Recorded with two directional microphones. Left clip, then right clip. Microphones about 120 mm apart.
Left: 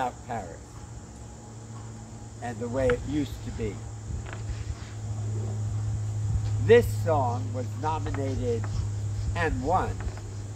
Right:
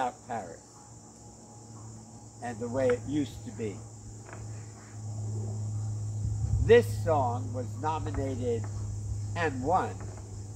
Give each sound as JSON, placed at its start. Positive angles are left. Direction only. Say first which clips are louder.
{"t": 0.0, "sound": "cricket", "louder": "left 2 dB", "side_deg": 20}
{"t": 2.4, "sound": "speech", "louder": "left 2 dB", "side_deg": 15}
{"t": 6.6, "sound": "speech", "louder": "left 2 dB", "side_deg": 15}